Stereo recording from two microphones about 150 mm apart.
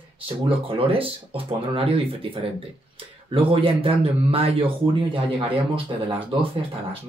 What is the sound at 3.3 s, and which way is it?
Speech, 35° right (ahead or behind).